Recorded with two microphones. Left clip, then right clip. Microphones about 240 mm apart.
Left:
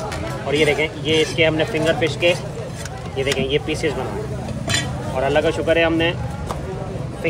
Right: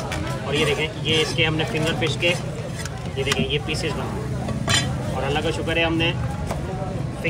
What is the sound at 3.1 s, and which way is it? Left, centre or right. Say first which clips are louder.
Speech: left 3 dB; centre.